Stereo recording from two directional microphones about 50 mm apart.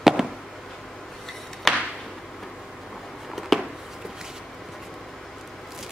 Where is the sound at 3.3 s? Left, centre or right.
Centre.